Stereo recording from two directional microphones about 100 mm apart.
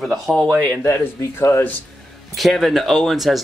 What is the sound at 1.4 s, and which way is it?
Speech, 25° left (ahead or behind).